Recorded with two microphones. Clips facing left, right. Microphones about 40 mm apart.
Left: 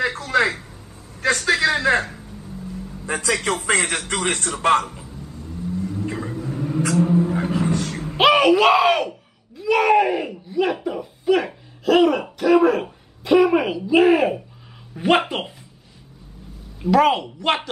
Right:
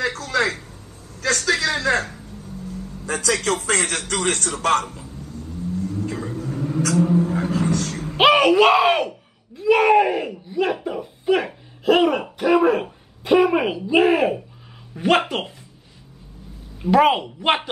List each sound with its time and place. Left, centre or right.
0.0 s a sound: left
1.2 s a man's voice: left
5.8 s vehicle: left
8.2 s speech: centre
16.9 s a woman's voice: centre